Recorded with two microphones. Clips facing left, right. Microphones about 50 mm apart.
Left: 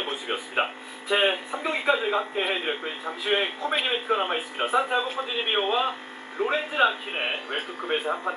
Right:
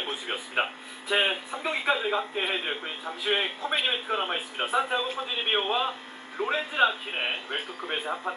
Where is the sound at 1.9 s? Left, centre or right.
Centre.